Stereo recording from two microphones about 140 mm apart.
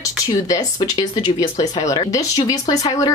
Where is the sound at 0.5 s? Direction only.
25° left (ahead or behind).